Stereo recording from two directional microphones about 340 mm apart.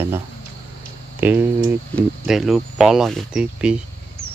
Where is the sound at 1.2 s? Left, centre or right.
Centre.